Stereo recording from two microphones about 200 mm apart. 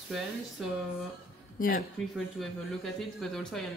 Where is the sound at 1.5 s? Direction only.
45° left (ahead or behind).